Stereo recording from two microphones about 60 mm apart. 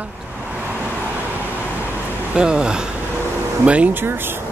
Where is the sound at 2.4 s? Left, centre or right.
Centre.